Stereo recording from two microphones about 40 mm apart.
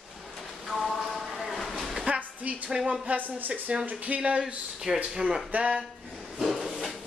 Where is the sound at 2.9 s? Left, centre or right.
Right.